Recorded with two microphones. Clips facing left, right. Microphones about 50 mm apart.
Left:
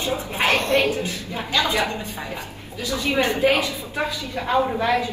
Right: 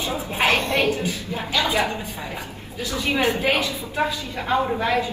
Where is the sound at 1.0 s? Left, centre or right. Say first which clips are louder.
Right 1 dB; left.